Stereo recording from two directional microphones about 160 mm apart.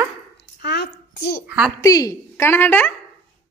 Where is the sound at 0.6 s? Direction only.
90° left; by 1.5 s 75° left (ahead or behind).